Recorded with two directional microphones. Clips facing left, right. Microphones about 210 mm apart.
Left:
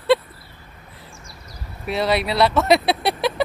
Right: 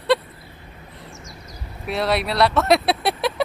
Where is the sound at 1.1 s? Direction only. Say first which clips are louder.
Right 3 dB; 30° left (ahead or behind).